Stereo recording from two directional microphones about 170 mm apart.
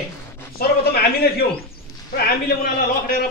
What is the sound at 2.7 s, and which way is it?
Speech, 60° left (ahead or behind).